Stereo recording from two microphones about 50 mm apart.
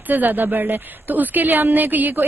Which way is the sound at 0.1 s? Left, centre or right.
Right.